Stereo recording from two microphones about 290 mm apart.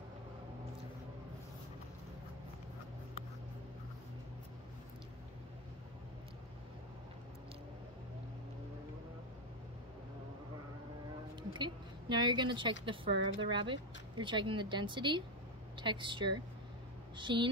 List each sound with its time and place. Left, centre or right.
11.5 s speech: centre